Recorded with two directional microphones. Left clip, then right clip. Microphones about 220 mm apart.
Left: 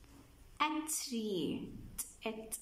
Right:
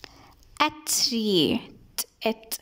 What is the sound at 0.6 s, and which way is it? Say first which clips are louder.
A woman's voice: right 12 dB; 50° right (ahead or behind).